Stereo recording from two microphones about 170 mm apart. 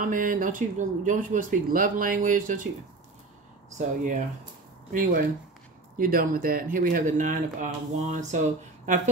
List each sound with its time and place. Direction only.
0.0 s speech: 55° right (ahead or behind)
3.7 s speech: 45° right (ahead or behind)
5.9 s speech: 55° right (ahead or behind)